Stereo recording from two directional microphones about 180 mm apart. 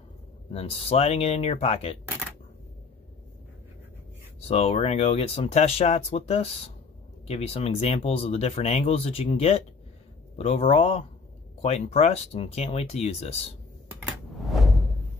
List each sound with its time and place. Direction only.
0.5 s speech: 35° left (ahead or behind)
4.5 s speech: 35° left (ahead or behind)
13.8 s a sound: 5° right (ahead or behind)